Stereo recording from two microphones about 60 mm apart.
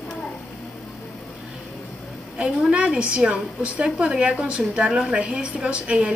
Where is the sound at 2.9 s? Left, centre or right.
Right.